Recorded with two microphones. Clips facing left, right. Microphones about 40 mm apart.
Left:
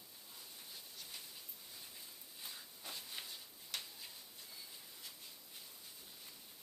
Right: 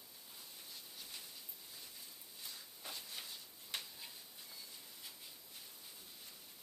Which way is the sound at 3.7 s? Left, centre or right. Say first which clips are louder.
Right 1 dB; right.